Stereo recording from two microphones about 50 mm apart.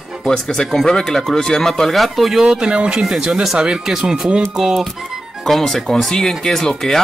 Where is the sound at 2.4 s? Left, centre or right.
Centre.